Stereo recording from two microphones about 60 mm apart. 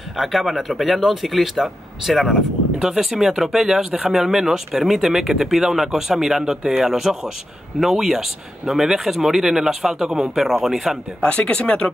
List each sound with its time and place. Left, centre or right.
0.2 s speech: centre
11.2 s speech: centre